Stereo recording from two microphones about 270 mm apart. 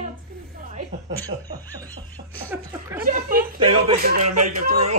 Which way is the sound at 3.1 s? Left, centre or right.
Right.